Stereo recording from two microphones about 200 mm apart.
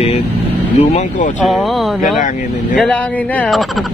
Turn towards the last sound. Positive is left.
turn(degrees=0)  # may be behind; listen again after turning